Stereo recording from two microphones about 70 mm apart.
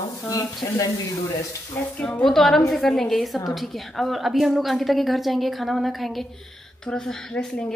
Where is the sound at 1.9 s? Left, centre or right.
Centre.